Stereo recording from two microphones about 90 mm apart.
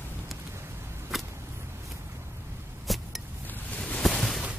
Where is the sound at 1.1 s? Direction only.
Centre (ahead or behind).